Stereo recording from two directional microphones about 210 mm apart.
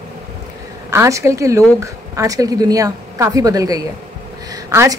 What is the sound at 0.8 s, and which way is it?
A woman's voice, 15° right (ahead or behind).